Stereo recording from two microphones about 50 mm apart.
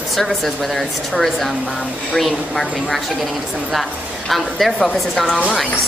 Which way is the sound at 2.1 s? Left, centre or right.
Centre.